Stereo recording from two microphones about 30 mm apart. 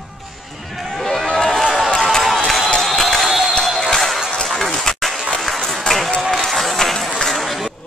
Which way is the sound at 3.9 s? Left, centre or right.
Centre.